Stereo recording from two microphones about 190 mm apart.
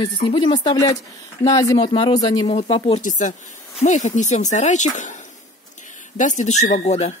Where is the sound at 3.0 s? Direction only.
40° left (ahead or behind).